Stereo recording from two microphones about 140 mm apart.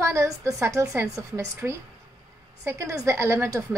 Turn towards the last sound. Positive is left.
turn(degrees=-20)  # may be behind; listen again after turning